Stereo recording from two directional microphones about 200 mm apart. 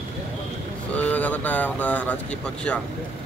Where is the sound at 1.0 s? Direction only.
5° left (ahead or behind).